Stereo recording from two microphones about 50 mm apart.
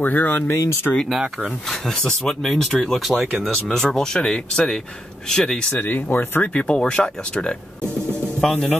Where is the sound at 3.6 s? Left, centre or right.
Centre.